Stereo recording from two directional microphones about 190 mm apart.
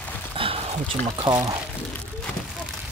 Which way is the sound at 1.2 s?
20° right (ahead or behind).